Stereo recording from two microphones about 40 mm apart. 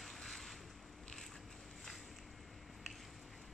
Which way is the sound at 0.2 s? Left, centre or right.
Centre.